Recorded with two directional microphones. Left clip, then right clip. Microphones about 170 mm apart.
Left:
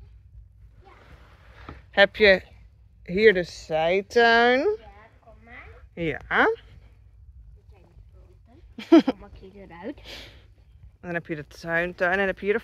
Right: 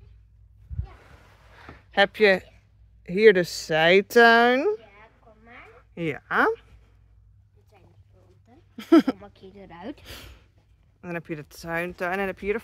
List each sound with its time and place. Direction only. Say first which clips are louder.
1.9 s speech: left 2 dB; 20° right (ahead or behind)
3.0 s a sound: even; 20° right (ahead or behind)
3.3 s speech: right 3 dB; 85° right
4.2 s speech: even; 35° right (ahead or behind)
5.7 s a sound: left 1 dB; 25° right (ahead or behind)
8.7 s speech: left 1 dB; 20° right (ahead or behind)
10.0 s speech: left 2 dB; 25° right (ahead or behind)
11.0 s speech: left 3 dB; 15° right (ahead or behind)